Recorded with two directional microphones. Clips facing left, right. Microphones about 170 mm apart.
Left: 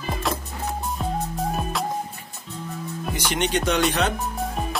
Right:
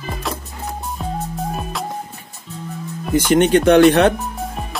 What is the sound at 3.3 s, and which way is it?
Speech, 50° right (ahead or behind).